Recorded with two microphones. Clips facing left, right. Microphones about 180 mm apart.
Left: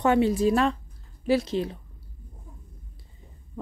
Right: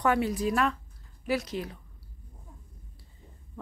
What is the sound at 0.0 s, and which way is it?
Speech, 25° left (ahead or behind).